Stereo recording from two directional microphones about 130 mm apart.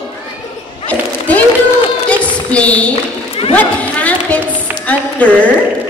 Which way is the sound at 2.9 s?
50° left (ahead or behind).